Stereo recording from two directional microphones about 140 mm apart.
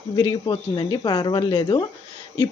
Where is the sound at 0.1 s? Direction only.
30° left (ahead or behind).